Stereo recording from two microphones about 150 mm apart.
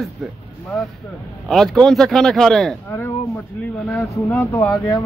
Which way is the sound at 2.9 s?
15° left (ahead or behind).